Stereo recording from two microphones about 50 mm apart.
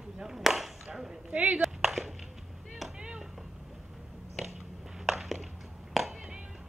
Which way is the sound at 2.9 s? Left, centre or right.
Centre.